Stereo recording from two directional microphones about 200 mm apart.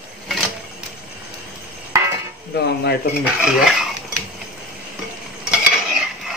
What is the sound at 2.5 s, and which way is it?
Speech, 55° left (ahead or behind).